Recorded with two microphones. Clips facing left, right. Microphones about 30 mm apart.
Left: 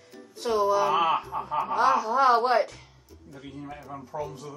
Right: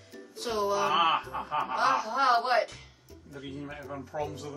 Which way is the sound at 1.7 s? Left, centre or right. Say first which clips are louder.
Left 5 dB; right.